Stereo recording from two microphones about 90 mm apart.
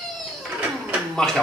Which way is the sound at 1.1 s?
5° left (ahead or behind).